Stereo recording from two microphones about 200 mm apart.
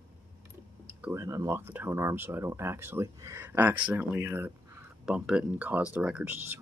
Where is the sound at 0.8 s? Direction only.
10° right (ahead or behind).